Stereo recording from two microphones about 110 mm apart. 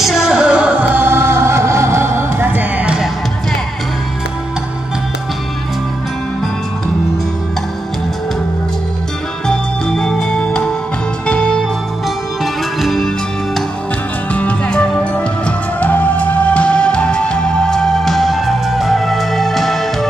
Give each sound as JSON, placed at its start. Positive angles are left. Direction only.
{"t": 0.0, "sound": "music", "side_deg": -5}
{"t": 9.5, "sound": "music", "side_deg": 5}
{"t": 12.8, "sound": "music", "side_deg": 0}
{"t": 14.3, "sound": "music", "side_deg": 15}